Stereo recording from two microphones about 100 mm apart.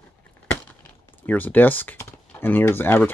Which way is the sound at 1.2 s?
15° left (ahead or behind).